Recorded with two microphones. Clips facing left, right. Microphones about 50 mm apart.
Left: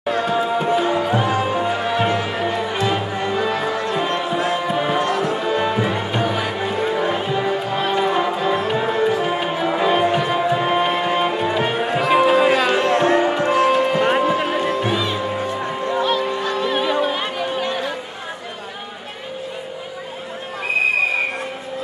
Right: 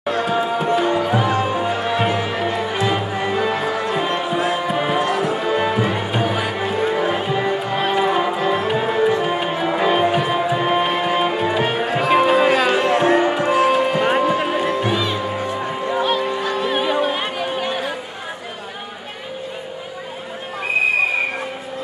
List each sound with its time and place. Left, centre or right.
0.0 s tabla: centre
0.7 s music: centre
16.0 s music: centre
16.3 s music: centre